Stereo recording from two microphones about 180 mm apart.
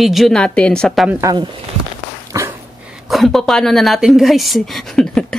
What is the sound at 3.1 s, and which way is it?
A woman's voice, centre (ahead or behind).